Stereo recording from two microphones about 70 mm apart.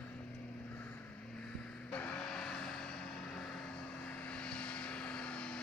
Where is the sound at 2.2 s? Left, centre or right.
Centre.